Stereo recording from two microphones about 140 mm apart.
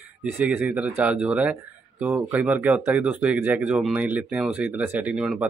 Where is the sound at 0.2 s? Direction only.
10° right (ahead or behind).